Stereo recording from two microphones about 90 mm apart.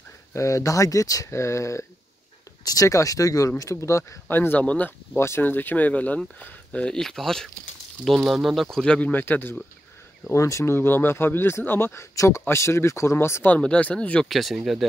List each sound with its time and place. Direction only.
0.3 s speech: 35° left (ahead or behind)
10.3 s speech: 35° left (ahead or behind)
13.6 s speech: 15° left (ahead or behind)
14.3 s speech: centre (ahead or behind)